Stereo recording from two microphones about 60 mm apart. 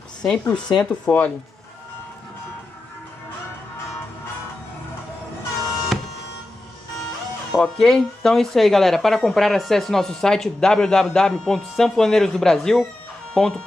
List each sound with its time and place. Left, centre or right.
0.2 s speech: centre
1.0 s speech: left
7.5 s speech: centre